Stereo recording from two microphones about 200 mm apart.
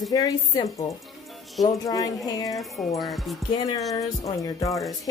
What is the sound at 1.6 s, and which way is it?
Speech, 20° left (ahead or behind).